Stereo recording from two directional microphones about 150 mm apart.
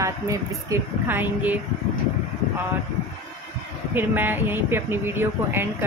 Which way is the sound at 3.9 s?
15° right (ahead or behind).